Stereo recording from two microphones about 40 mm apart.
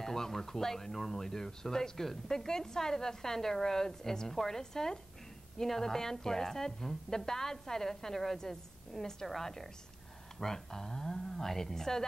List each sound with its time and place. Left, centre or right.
0.0 s speech: centre